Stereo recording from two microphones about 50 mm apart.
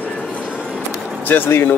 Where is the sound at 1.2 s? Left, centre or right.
Left.